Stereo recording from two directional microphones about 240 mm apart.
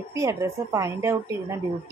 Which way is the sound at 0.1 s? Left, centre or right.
Centre.